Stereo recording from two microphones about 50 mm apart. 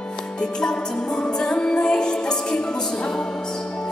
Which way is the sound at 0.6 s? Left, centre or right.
Centre.